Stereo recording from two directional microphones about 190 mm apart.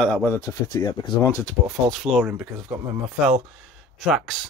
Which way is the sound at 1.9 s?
Centre (ahead or behind).